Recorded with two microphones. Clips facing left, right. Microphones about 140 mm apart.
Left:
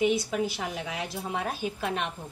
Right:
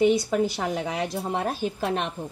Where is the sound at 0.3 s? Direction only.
45° right (ahead or behind).